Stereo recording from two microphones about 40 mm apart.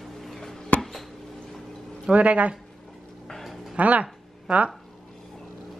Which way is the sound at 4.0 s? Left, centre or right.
Right.